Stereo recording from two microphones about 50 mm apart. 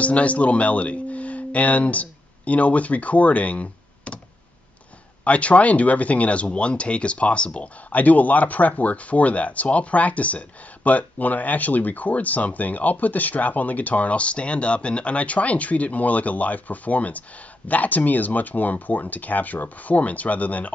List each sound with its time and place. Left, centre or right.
0.0 s speech: left
5.2 s speech: left